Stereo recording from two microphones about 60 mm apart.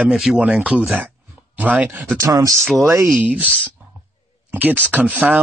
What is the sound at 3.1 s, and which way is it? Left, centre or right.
Speech, right.